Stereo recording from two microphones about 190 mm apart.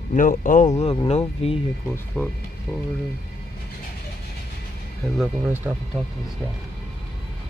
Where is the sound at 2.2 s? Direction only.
5° left (ahead or behind).